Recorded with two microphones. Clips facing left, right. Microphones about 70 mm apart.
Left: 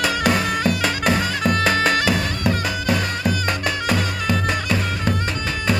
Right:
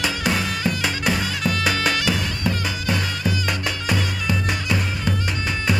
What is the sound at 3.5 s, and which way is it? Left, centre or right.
Music, centre.